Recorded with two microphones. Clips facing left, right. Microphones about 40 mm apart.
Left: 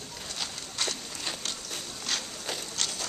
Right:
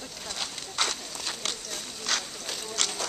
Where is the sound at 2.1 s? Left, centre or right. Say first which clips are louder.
Right 2 dB; right.